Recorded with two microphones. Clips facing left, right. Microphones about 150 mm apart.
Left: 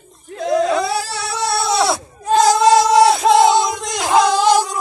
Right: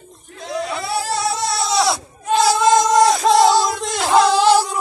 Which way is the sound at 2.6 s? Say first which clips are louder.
Left 1 dB; 10° left (ahead or behind).